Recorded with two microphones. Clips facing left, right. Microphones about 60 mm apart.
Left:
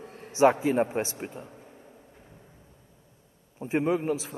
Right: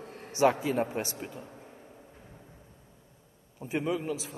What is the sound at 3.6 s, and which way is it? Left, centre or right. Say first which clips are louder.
Speech: left 5 dB; left.